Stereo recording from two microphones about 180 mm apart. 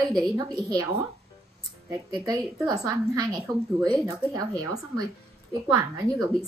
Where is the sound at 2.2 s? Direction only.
20° right (ahead or behind).